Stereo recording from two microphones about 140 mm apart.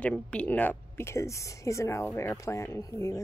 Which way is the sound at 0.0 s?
10° left (ahead or behind).